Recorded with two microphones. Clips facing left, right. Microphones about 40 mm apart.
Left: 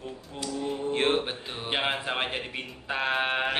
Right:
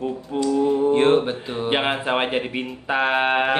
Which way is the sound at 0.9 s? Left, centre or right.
Centre.